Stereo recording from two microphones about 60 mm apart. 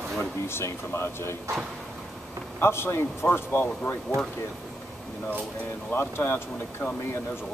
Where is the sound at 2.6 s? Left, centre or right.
Left.